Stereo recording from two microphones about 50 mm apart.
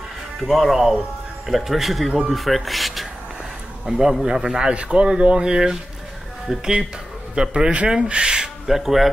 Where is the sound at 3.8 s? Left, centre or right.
Centre.